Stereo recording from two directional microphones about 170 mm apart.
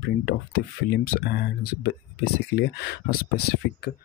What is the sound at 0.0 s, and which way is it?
Speech, 60° left (ahead or behind).